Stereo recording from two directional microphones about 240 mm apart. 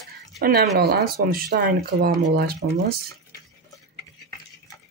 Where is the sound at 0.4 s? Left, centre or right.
Right.